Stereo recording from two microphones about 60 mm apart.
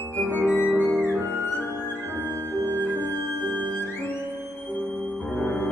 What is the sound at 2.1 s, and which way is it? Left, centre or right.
Music, left.